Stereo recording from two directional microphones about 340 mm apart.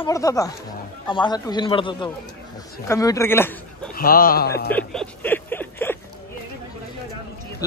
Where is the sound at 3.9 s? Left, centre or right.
Left.